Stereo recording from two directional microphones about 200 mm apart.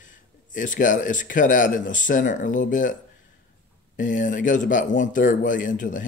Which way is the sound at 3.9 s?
40° left (ahead or behind).